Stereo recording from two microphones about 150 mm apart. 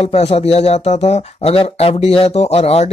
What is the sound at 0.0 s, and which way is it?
Speech, 45° left (ahead or behind).